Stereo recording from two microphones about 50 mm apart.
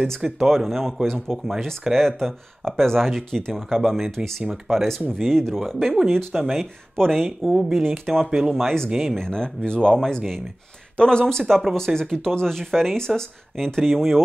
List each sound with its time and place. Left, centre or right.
0.2 s speech: centre
0.7 s speech: centre
7.2 s speech: centre
8.6 s speech: centre